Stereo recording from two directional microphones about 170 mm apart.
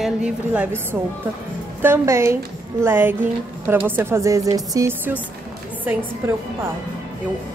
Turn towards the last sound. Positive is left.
turn(degrees=-10)  # may be behind; listen again after turning